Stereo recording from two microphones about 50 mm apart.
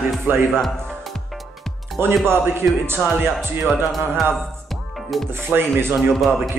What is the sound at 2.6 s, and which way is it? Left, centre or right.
Music, right.